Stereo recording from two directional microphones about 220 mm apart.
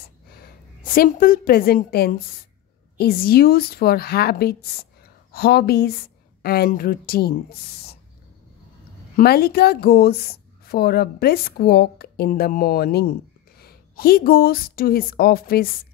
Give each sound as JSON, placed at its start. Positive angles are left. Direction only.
{"t": 0.3, "sound": "a woman's voice", "side_deg": 45}
{"t": 9.1, "sound": "a woman's voice", "side_deg": 45}